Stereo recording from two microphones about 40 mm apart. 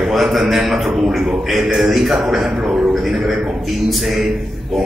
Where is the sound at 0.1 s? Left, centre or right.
Centre.